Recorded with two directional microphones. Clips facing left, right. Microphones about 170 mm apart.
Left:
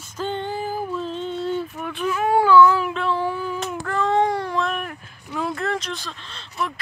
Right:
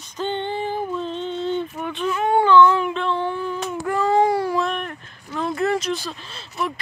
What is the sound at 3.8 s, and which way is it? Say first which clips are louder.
Child singing: right 2 dB; 10° right (ahead or behind).